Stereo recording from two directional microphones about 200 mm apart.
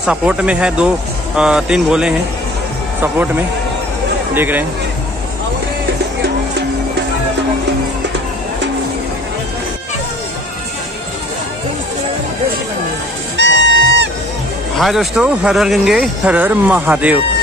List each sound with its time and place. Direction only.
0.0 s speech: 5° right (ahead or behind)
13.6 s music: 75° left (ahead or behind)
14.8 s speech: centre (ahead or behind)